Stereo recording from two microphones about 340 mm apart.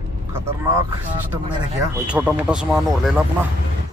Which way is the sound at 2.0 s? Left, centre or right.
Centre.